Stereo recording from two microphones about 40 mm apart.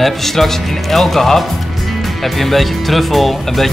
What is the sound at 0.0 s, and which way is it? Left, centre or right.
Speech, centre.